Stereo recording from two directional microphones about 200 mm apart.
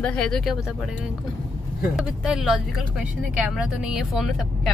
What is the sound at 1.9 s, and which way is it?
Speech, centre (ahead or behind).